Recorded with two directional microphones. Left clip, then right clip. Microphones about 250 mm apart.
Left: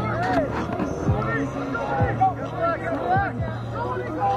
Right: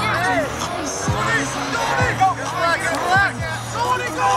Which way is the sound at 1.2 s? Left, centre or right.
Right.